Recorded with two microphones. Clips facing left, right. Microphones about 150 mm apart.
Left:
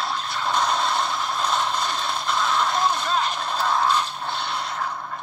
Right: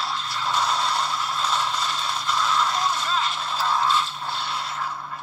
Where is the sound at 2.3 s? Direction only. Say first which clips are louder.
Left 1 dB; centre (ahead or behind).